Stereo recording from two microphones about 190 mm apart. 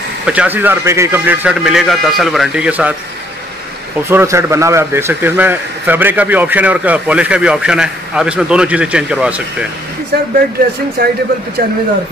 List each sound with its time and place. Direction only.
0.3 s a man's voice: 10° right (ahead or behind)
4.1 s a man's voice: 15° right (ahead or behind)
10.1 s speech: 55° right (ahead or behind)